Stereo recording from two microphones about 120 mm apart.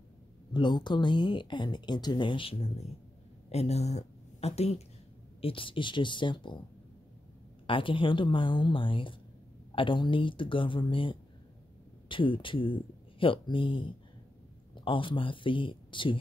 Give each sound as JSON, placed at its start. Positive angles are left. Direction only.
{"t": 0.5, "sound": "a woman's voice", "side_deg": 40}
{"t": 5.4, "sound": "a woman's voice", "side_deg": 45}
{"t": 7.6, "sound": "a woman's voice", "side_deg": 45}